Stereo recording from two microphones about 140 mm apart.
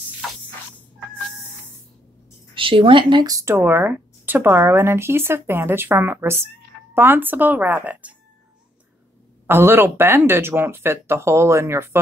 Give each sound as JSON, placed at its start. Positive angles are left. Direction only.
{"t": 2.5, "sound": "speech", "side_deg": -40}
{"t": 3.3, "sound": "speech", "side_deg": -20}
{"t": 9.5, "sound": "speech", "side_deg": -15}